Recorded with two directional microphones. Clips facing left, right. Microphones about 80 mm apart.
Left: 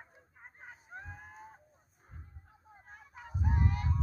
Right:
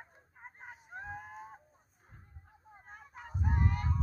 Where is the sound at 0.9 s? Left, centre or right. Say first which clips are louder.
Right 5 dB; centre.